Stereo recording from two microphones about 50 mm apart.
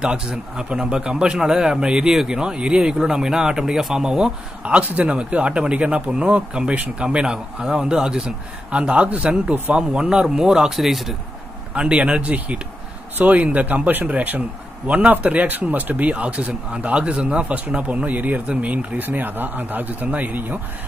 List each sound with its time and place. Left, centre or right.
0.3 s a man's voice: centre
11.7 s a man's voice: right